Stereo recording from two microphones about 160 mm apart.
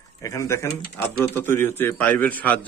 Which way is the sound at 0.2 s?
20° left (ahead or behind).